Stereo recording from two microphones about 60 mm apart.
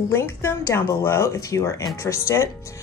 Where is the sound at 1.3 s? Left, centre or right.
Left.